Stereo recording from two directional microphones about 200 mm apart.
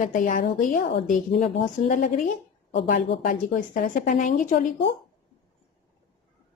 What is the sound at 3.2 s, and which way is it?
A woman's voice, 40° left (ahead or behind).